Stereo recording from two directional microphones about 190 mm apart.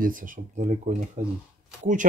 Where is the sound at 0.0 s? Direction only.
45° right (ahead or behind).